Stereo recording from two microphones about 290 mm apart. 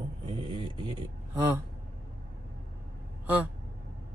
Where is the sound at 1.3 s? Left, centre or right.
Centre.